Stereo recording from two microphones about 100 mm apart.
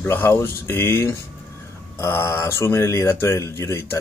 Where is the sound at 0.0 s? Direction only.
25° left (ahead or behind).